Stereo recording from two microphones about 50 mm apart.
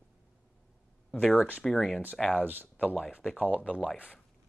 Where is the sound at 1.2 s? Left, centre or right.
Centre.